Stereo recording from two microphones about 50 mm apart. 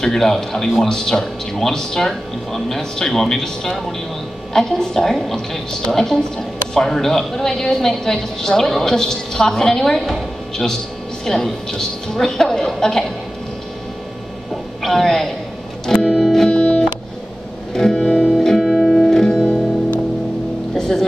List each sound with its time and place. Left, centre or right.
0.0 s a woman's voice: centre
14.5 s a sound: centre
15.9 s music: centre
18.6 s music: centre
19.0 s music: centre
19.4 s music: left
20.7 s music: centre